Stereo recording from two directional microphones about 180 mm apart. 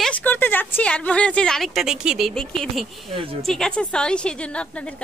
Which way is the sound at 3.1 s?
30° right (ahead or behind).